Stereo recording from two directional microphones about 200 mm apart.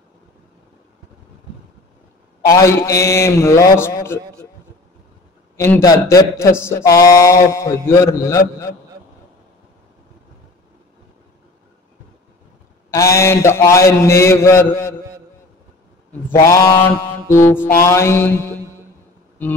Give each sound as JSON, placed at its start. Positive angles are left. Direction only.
{"t": 2.5, "sound": "speech", "side_deg": 15}
{"t": 5.6, "sound": "speech", "side_deg": 15}
{"t": 12.9, "sound": "speech", "side_deg": 15}
{"t": 16.3, "sound": "speech", "side_deg": 15}